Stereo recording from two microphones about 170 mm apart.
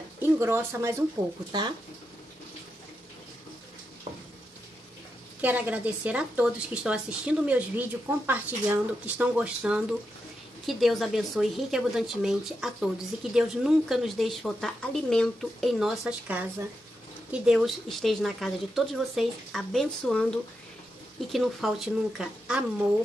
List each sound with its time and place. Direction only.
0.2 s speech: 15° right (ahead or behind)
5.4 s a woman's voice: 10° right (ahead or behind)